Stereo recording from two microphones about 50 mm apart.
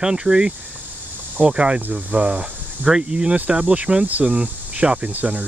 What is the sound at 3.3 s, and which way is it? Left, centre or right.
Speech, right.